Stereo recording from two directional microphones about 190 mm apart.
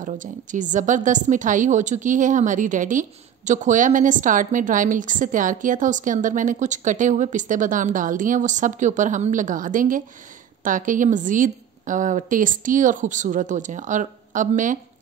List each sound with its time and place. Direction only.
0.0 s a woman's voice: 40° right (ahead or behind)